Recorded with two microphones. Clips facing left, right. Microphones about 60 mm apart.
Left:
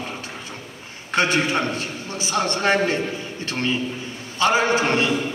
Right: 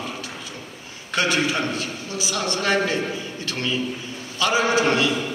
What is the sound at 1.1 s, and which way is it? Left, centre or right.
A man's voice, left.